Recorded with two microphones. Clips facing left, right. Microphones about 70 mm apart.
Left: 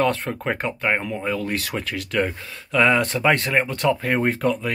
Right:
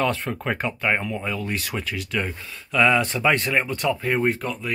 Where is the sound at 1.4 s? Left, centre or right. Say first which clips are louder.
Left 2 dB; left.